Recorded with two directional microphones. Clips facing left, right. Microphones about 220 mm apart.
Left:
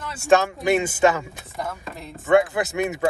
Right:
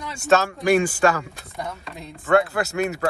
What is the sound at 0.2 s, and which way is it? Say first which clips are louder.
Speech: left 1 dB; 15° left (ahead or behind).